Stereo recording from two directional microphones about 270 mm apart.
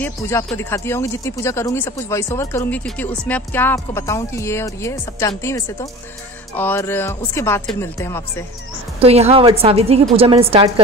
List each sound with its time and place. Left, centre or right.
0.0 s speech: centre
9.0 s a woman's voice: right